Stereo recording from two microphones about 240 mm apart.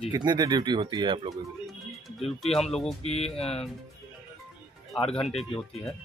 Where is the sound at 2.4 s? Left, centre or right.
Centre.